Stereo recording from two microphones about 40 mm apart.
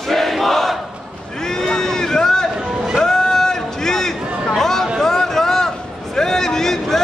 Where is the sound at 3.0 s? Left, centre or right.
Centre.